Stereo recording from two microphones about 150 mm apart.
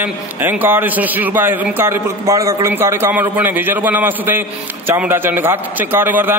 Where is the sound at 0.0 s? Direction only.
10° right (ahead or behind).